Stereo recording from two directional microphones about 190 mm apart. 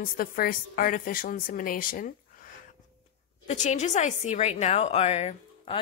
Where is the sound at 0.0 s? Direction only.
45° left (ahead or behind).